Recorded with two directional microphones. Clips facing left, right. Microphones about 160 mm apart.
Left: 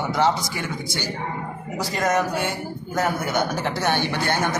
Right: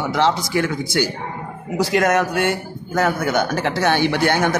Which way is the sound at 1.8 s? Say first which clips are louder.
Right 5 dB; 75° right (ahead or behind).